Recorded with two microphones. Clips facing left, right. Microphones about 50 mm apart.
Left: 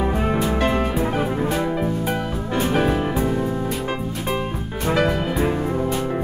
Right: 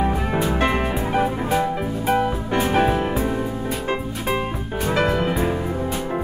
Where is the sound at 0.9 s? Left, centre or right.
Centre.